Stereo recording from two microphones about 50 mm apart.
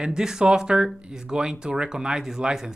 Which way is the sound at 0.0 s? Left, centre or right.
Centre.